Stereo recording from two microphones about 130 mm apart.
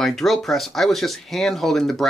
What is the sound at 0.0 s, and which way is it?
Speech, centre (ahead or behind).